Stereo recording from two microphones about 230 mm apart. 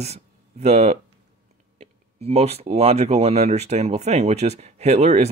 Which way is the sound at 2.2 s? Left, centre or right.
Right.